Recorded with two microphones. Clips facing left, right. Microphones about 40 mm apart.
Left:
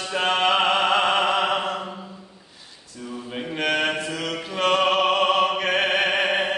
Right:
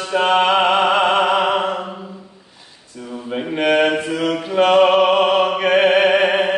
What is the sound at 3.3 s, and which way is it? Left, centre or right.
Mantra, centre.